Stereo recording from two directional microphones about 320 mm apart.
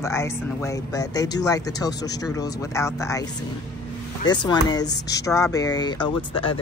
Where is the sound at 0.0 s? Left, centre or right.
Centre.